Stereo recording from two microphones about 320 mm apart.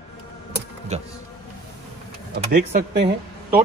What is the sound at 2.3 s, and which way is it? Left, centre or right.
Speech, right.